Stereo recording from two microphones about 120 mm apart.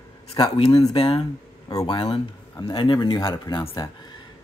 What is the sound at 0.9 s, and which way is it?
Speech, 50° left (ahead or behind).